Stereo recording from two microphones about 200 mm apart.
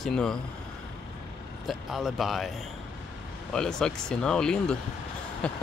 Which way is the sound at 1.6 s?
Centre (ahead or behind).